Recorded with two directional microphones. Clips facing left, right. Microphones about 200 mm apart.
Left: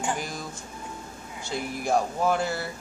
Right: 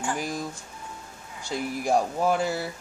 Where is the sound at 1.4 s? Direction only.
10° right (ahead or behind).